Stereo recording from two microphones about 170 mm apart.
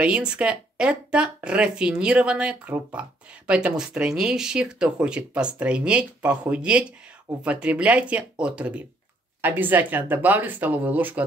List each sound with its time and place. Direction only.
0.0 s speech: 5° right (ahead or behind)